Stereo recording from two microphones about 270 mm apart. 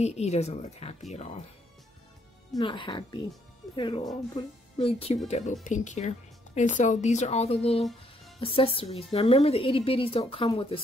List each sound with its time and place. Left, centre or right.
0.0 s speech: left
2.5 s speech: centre